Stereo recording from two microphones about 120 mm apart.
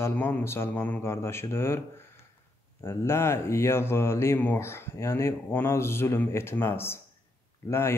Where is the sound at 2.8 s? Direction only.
20° left (ahead or behind).